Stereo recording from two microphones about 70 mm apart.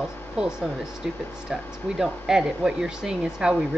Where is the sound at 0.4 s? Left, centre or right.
Centre.